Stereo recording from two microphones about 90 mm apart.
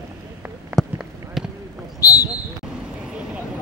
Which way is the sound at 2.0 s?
40° left (ahead or behind).